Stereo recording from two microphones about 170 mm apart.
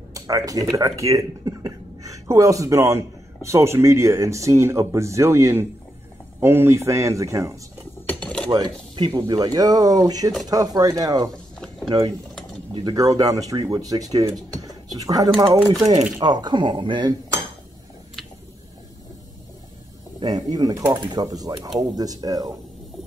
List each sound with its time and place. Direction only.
0.1 s speech: 20° right (ahead or behind)
8.2 s a sound: 5° left (ahead or behind)
8.5 s cutlery: 25° right (ahead or behind)
9.2 s speech: 20° right (ahead or behind)
12.7 s speech: 20° right (ahead or behind)
20.2 s speech: 25° right (ahead or behind)